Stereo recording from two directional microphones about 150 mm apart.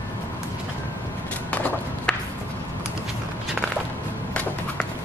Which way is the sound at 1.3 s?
10° left (ahead or behind).